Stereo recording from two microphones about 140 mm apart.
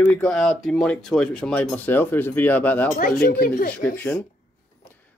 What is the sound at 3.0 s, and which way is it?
Speech, 85° left.